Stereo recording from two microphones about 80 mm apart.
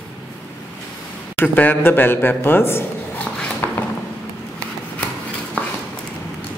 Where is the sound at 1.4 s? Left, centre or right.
Left.